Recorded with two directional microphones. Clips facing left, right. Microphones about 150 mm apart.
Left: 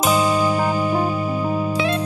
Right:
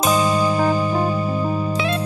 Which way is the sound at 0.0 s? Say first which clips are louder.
Even; 10° left (ahead or behind).